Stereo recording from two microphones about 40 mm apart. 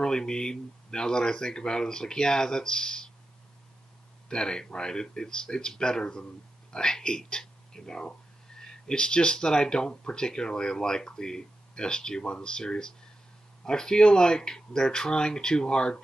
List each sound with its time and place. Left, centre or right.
0.0 s speech: centre
4.3 s speech: left